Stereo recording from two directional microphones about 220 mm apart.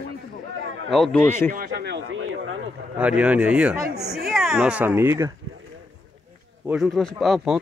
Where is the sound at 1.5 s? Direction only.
40° right (ahead or behind); by 2.5 s 65° right (ahead or behind).